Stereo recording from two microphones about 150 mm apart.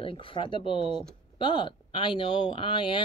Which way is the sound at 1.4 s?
35° left (ahead or behind).